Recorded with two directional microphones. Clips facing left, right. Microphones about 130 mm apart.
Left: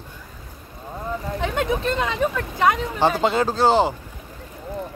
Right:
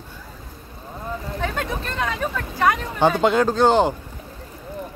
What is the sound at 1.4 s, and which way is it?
Speech, 20° left (ahead or behind).